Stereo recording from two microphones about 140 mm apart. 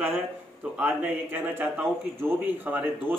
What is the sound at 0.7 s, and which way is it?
Speech, 15° right (ahead or behind).